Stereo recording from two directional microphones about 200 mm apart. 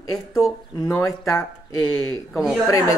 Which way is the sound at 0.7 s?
15° left (ahead or behind).